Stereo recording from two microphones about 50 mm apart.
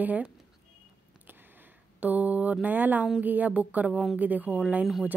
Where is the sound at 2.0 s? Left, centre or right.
Right.